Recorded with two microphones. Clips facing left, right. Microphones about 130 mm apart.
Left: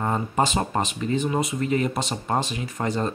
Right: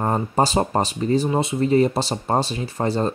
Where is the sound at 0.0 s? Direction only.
35° right (ahead or behind).